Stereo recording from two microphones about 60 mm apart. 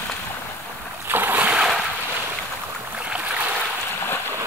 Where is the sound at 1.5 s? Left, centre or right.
Centre.